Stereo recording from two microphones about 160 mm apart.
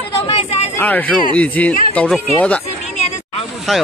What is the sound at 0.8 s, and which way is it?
Speech, 10° left (ahead or behind).